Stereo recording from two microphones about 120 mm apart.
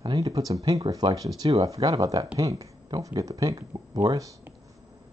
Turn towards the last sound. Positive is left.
turn(degrees=-35)  # may be behind; listen again after turning